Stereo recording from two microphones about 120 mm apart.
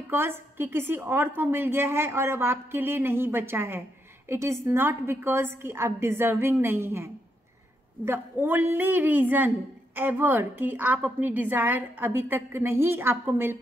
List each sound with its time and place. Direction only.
0.1 s a woman's voice: 20° right (ahead or behind)